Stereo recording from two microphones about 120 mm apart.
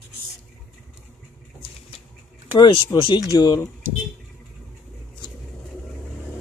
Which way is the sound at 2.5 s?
35° left (ahead or behind).